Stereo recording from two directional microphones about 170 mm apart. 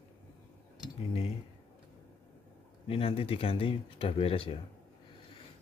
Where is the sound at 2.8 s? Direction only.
35° left (ahead or behind).